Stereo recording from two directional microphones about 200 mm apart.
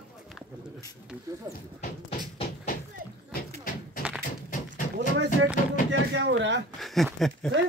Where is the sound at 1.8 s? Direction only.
35° left (ahead or behind).